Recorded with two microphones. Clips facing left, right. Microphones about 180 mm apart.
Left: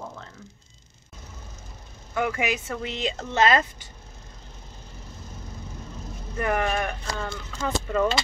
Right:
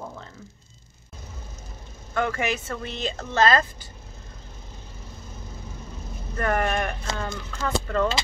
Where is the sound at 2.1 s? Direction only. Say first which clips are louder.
Even; 10° left (ahead or behind).